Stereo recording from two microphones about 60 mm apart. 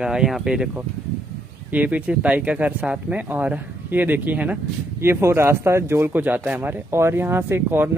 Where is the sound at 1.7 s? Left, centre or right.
Right.